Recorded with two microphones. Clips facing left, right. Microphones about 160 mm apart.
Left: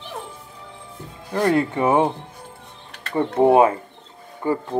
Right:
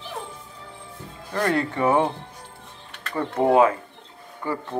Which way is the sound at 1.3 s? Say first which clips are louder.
Left 4 dB; 20° left (ahead or behind).